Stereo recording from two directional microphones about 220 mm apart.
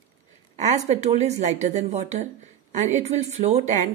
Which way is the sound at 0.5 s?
30° right (ahead or behind).